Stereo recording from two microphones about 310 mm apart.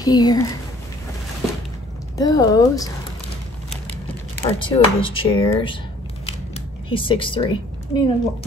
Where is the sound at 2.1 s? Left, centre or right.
Centre.